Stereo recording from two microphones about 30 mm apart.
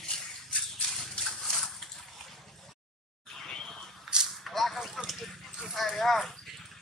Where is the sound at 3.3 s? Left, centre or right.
Centre.